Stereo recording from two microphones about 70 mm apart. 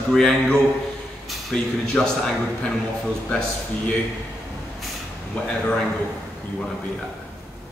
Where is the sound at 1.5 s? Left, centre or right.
Centre.